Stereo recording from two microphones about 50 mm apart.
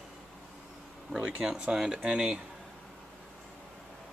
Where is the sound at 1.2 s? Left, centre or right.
Right.